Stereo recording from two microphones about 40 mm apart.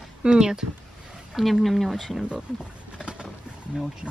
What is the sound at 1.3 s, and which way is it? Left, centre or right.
Speech, centre.